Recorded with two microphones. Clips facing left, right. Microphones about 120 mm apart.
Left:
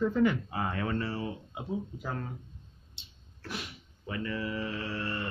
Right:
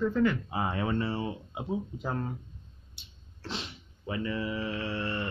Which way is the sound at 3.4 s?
25° right (ahead or behind).